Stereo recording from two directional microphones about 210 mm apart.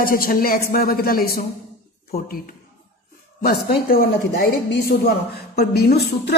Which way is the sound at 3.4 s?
45° left (ahead or behind).